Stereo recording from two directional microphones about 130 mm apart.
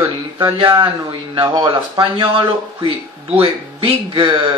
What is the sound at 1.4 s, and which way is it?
A man's voice, 35° right (ahead or behind).